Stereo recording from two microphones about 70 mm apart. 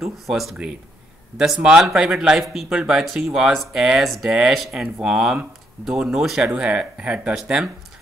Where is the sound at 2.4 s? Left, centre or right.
Centre.